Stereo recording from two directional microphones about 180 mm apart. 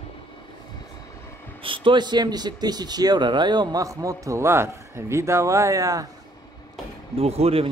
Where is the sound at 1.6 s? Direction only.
30° right (ahead or behind).